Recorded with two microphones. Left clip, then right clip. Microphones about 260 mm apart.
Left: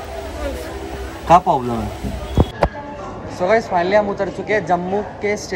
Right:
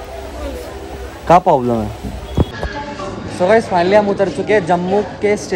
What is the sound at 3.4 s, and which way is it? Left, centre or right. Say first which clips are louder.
A man's voice: right 4 dB; right.